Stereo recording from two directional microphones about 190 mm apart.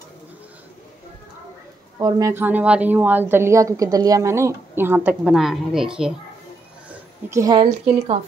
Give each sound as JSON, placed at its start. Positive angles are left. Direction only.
{"t": 2.0, "sound": "a woman's voice", "side_deg": -20}
{"t": 7.2, "sound": "a woman's voice", "side_deg": -15}
{"t": 7.5, "sound": "a woman's voice", "side_deg": -30}